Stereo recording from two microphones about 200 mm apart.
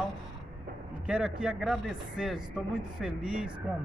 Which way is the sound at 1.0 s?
5° right (ahead or behind).